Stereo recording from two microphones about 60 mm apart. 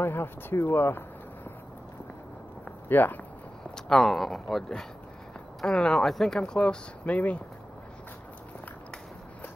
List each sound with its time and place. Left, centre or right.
0.0 s speech: left
2.9 s speech: left
3.7 s speech: centre; by 7.4 s left